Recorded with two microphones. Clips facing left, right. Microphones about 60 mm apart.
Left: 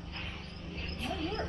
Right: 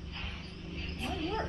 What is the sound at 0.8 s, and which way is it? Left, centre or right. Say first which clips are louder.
Dog: even; centre.